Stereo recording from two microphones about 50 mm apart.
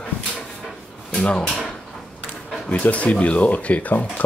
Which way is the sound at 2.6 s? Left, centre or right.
Left.